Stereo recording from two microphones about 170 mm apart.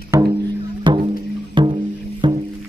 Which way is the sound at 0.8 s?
30° right (ahead or behind).